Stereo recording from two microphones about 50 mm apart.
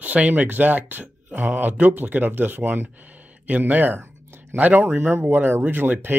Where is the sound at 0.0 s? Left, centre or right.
Right.